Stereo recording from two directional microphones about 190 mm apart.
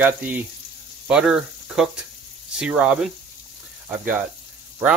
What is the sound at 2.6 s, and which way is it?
Speech, 5° right (ahead or behind).